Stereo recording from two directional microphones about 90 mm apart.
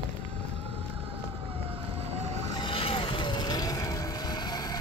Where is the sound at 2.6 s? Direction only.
80° left.